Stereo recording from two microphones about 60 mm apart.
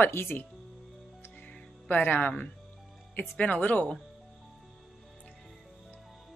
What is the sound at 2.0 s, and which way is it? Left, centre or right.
Speech, left.